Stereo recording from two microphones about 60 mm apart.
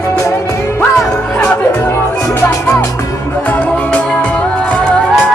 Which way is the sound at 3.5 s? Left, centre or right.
Left.